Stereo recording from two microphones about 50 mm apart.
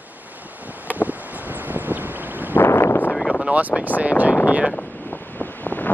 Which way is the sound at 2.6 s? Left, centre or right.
Left.